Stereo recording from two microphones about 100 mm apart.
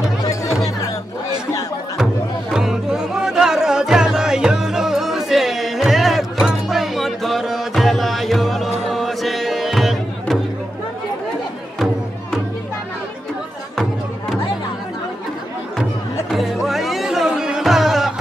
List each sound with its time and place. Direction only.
0.2 s music: 35° left (ahead or behind)
2.5 s music: 5° right (ahead or behind)
16.3 s music: centre (ahead or behind)